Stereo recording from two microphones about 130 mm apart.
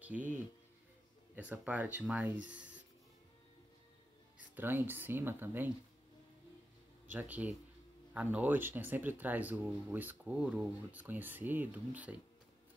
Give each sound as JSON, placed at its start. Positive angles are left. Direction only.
{"t": 0.0, "sound": "speech", "side_deg": -10}
{"t": 1.3, "sound": "speech", "side_deg": -15}
{"t": 4.6, "sound": "speech", "side_deg": -15}
{"t": 7.1, "sound": "speech", "side_deg": -10}